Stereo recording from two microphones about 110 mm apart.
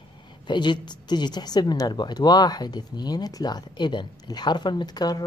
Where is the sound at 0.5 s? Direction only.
45° left (ahead or behind).